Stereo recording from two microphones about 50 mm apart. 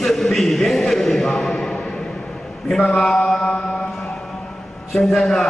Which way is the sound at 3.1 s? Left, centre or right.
Centre.